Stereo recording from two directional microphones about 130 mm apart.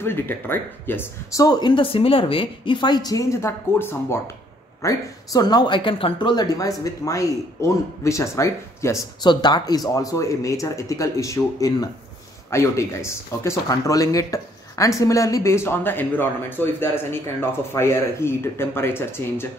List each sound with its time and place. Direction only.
0.0 s speech: 15° left (ahead or behind)
1.4 s a woman's voice: 30° left (ahead or behind)
1.8 s a woman's voice: 45° left (ahead or behind); by 4.2 s 20° left (ahead or behind)
4.8 s a woman's voice: 30° left (ahead or behind)